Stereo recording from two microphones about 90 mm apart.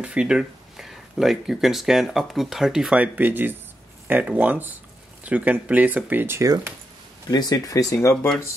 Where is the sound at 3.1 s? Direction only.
20° right (ahead or behind).